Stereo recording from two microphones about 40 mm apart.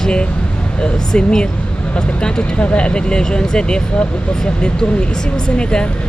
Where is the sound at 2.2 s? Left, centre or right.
Left.